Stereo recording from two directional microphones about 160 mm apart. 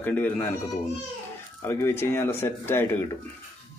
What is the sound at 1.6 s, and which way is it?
Speech, 15° left (ahead or behind).